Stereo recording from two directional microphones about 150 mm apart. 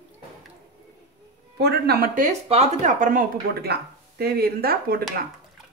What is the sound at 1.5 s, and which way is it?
Speech, 90° right.